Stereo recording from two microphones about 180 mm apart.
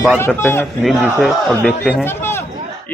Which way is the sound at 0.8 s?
Centre (ahead or behind).